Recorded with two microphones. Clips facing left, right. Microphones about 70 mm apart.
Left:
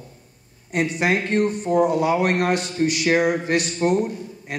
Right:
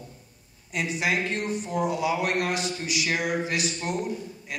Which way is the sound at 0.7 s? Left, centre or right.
Left.